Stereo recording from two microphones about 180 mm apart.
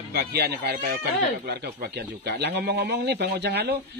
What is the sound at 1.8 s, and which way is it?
Speech, 65° right (ahead or behind).